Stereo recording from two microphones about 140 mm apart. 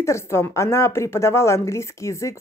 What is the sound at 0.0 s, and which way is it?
A woman's voice, 20° left (ahead or behind).